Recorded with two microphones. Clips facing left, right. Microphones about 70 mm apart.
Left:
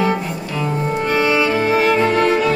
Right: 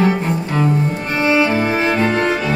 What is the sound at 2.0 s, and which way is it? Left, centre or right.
Music, right.